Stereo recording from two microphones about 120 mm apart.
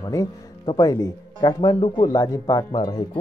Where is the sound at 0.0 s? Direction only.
30° left (ahead or behind).